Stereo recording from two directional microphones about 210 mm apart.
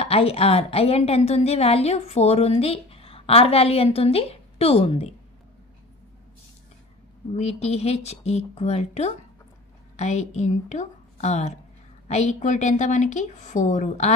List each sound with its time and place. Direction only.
0.0 s a woman's voice: 25° left (ahead or behind)
7.3 s a woman's voice: 30° left (ahead or behind)